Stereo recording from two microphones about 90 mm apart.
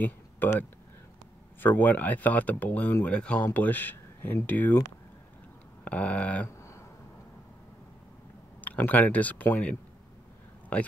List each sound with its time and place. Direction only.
0.0 s speech: 20° left (ahead or behind)
5.9 s speech: 15° left (ahead or behind)
8.5 s speech: 20° left (ahead or behind)